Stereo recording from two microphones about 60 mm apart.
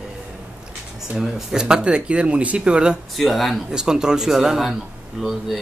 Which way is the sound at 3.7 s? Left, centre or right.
Centre.